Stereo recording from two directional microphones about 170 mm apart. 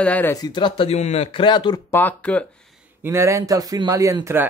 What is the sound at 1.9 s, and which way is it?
Speech, 10° left (ahead or behind).